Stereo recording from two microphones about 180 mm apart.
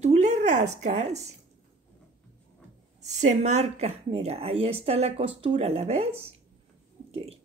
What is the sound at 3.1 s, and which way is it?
A woman's voice, 40° right (ahead or behind).